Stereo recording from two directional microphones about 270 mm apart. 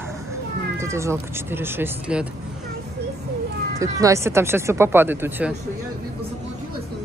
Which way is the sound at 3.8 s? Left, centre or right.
Centre.